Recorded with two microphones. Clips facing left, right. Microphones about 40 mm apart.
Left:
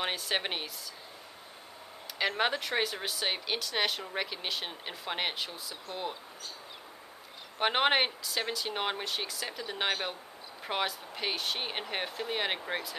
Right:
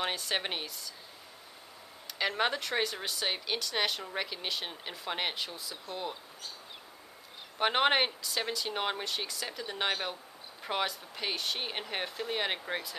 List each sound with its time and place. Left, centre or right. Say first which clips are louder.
0.0 s a woman's voice: left 1 dB; centre
2.1 s speech: left 1 dB; centre
7.5 s speech: even; centre